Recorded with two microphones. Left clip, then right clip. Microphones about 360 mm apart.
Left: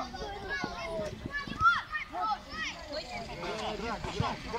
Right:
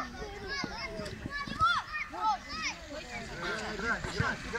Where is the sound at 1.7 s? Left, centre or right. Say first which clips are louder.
Left 2 dB; centre.